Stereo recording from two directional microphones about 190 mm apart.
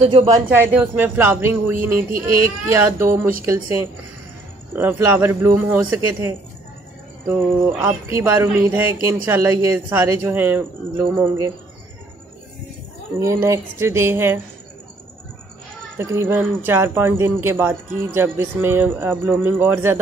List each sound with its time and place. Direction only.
0.0 s speech: 30° right (ahead or behind)
0.5 s speech: 10° right (ahead or behind)
13.2 s speech: 15° right (ahead or behind)
16.0 s speech: 15° right (ahead or behind)